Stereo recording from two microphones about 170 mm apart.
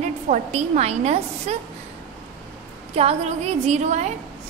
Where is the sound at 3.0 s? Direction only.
40° right (ahead or behind).